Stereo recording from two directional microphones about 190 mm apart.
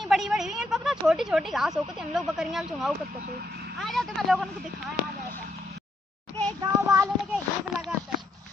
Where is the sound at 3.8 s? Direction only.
Centre (ahead or behind).